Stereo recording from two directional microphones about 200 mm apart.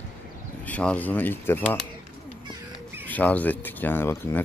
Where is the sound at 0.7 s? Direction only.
5° left (ahead or behind).